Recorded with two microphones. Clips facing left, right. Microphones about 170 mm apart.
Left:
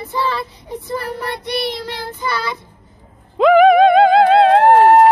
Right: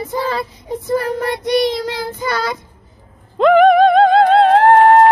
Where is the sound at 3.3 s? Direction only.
5° left (ahead or behind).